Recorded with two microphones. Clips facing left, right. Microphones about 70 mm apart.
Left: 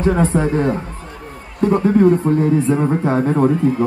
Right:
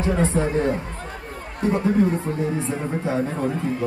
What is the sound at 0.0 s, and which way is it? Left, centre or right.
Speech, left.